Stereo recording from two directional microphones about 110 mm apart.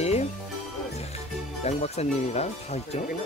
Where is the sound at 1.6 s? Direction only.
80° left.